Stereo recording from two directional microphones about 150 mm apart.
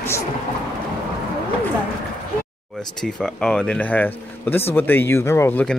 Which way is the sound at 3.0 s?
5° left (ahead or behind).